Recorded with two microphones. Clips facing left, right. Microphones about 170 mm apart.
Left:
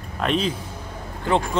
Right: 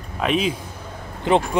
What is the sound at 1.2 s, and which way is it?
Speech, 15° right (ahead or behind).